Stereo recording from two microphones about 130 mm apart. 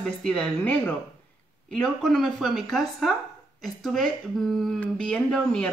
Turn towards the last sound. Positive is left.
turn(degrees=5)  # may be behind; listen again after turning